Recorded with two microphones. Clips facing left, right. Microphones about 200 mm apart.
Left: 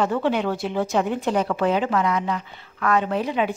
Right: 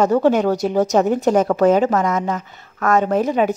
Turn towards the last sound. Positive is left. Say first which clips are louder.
# right 6 dB
turn(degrees=-45)  # may be behind; listen again after turning